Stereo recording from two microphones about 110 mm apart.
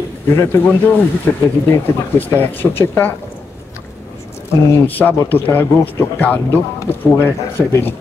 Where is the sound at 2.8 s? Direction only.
20° left (ahead or behind).